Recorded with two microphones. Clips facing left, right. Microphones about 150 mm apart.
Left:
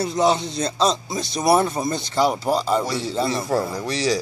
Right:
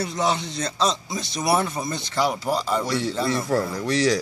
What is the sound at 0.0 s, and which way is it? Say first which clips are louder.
Speech: left 5 dB; 30° left (ahead or behind).